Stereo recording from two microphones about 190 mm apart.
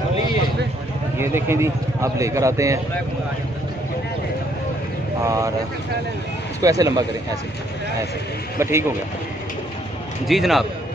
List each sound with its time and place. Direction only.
1.1 s a man's voice: 15° right (ahead or behind)
5.2 s speech: 15° right (ahead or behind)
6.6 s speech: 20° right (ahead or behind)
8.5 s speech: 15° right (ahead or behind)
10.2 s a man's voice: centre (ahead or behind)